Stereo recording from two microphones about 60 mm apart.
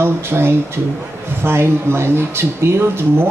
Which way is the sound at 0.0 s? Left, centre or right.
Right.